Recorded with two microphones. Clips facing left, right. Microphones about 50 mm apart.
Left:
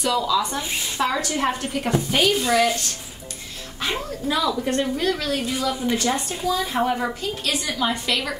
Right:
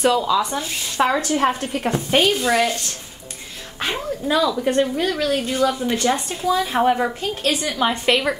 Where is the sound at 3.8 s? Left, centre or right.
Right.